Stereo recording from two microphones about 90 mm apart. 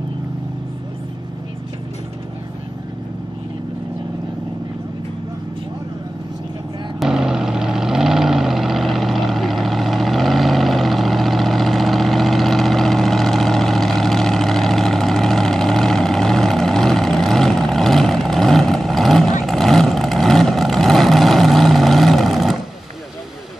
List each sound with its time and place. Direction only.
7.0 s vehicle: 5° right (ahead or behind)